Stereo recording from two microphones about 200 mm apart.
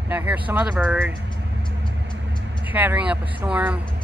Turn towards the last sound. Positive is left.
turn(degrees=-5)  # may be behind; listen again after turning